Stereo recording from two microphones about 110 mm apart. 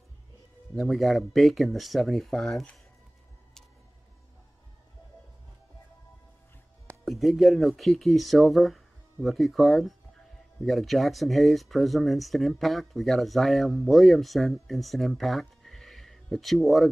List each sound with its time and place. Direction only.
0.7 s speech: centre (ahead or behind)
7.1 s speech: centre (ahead or behind)